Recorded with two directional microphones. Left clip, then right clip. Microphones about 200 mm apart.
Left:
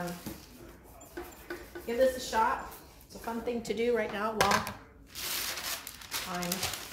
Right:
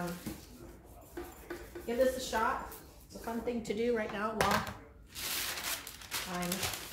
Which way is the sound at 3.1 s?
20° left (ahead or behind).